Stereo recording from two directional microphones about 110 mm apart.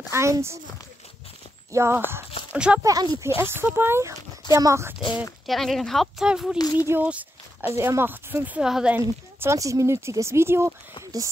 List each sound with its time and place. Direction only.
0.1 s speech: 25° right (ahead or behind)
1.7 s speech: 25° right (ahead or behind)
2.5 s speech: 10° right (ahead or behind)
2.8 s speech: 35° right (ahead or behind)
3.3 s speech: 20° right (ahead or behind)
5.5 s speech: centre (ahead or behind)
6.6 s speech: 35° left (ahead or behind)
6.9 s speech: 15° right (ahead or behind)
8.5 s speech: 5° right (ahead or behind)
8.9 s speech: 25° right (ahead or behind)